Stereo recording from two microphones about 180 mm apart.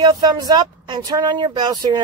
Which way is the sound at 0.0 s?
20° right (ahead or behind).